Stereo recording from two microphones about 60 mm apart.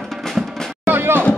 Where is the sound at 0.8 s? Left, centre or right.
Right.